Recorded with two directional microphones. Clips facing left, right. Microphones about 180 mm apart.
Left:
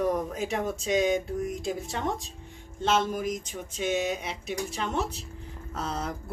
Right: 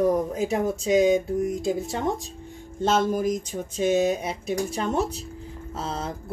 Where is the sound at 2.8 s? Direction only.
35° right (ahead or behind).